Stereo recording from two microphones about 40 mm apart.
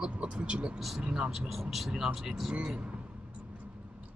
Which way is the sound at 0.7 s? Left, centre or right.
Centre.